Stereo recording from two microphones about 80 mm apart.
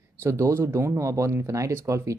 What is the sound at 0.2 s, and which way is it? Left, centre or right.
Speech, right.